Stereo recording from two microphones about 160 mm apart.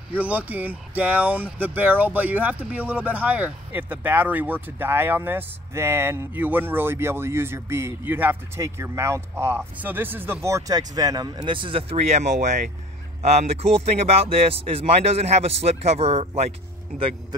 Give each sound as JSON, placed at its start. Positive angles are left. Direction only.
{"t": 0.1, "sound": "speech", "side_deg": -10}